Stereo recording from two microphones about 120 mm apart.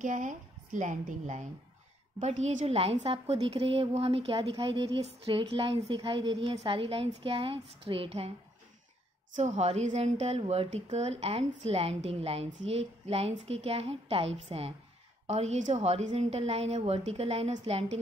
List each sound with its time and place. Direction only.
0.0 s a woman's voice: 90° right
2.1 s a woman's voice: 70° right (ahead or behind); by 8.3 s 55° right (ahead or behind)
9.3 s a woman's voice: 75° right (ahead or behind); by 17.9 s 60° right (ahead or behind)